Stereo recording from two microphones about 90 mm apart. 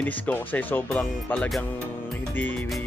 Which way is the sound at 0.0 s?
20° left (ahead or behind).